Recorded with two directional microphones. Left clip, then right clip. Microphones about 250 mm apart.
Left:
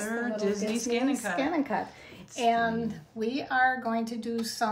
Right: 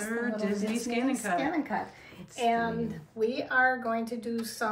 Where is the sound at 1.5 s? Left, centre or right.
Left.